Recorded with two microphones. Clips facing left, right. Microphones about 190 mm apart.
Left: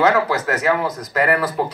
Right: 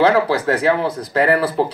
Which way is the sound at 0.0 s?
30° right (ahead or behind).